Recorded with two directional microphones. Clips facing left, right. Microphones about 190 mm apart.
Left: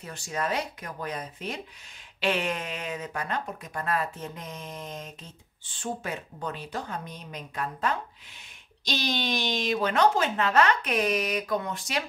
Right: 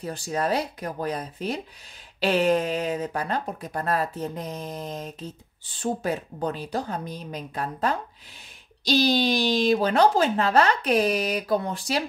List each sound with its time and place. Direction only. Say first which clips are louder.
0.0 s speech: right 5 dB; 35° right (ahead or behind)